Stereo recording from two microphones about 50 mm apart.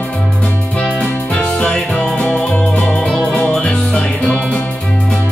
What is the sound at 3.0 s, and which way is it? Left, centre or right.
Music, centre.